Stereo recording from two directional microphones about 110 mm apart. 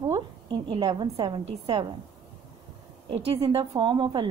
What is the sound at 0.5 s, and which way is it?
Speech, 50° right (ahead or behind).